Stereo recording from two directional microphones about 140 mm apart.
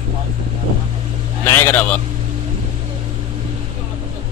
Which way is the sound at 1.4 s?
15° left (ahead or behind).